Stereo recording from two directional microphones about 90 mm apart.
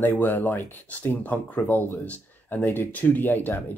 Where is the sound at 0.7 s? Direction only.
20° left (ahead or behind).